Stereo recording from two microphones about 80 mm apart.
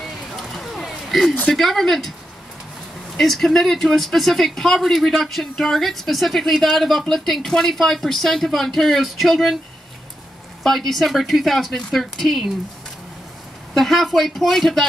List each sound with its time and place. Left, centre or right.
0.0 s a sound: centre
1.5 s speech: centre
3.2 s speech: centre
10.6 s speech: centre
13.7 s speech: centre